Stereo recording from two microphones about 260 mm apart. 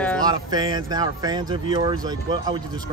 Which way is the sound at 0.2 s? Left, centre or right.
Centre.